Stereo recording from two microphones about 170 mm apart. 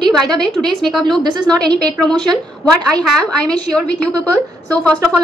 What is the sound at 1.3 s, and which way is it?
Speech, 25° right (ahead or behind).